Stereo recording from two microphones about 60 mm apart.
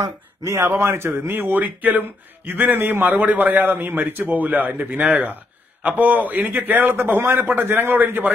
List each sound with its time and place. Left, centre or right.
0.0 s speech: right
0.6 s a man's voice: right